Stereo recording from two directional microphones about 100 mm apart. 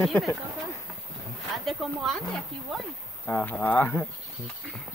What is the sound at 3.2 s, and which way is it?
Speech, 15° left (ahead or behind).